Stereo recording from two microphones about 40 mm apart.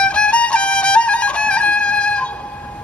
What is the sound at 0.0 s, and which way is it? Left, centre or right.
Music, left.